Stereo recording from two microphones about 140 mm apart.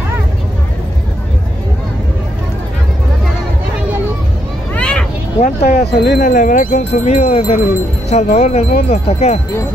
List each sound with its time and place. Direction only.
4.7 s children playing: 10° left (ahead or behind)
5.4 s speech: 80° left
6.9 s speech: 45° left (ahead or behind)